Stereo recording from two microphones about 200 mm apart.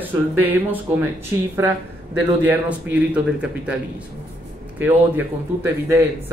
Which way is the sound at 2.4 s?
10° right (ahead or behind).